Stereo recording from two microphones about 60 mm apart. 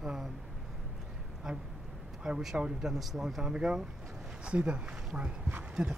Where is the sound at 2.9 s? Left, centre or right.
Centre.